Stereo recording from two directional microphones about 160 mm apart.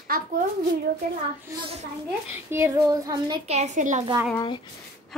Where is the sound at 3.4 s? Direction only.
45° right (ahead or behind).